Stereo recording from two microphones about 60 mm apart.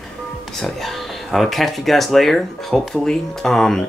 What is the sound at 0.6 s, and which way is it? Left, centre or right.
Speech, centre.